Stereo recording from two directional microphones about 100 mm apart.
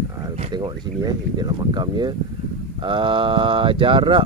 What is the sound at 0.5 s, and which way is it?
Speech, 45° right (ahead or behind).